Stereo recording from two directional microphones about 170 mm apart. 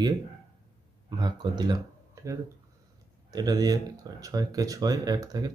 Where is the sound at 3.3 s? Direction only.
25° right (ahead or behind).